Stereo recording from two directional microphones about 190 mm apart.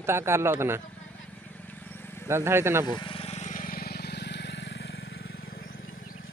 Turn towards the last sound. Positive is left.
turn(degrees=45)  # may be behind; listen again after turning